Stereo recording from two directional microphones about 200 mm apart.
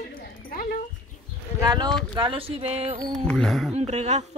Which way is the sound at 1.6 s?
20° right (ahead or behind).